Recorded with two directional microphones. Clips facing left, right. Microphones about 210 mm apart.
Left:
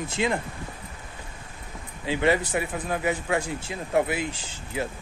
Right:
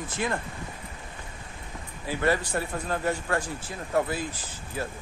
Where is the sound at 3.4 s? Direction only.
20° left (ahead or behind).